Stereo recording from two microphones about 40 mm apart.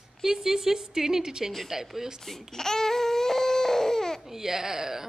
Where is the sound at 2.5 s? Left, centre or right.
Centre.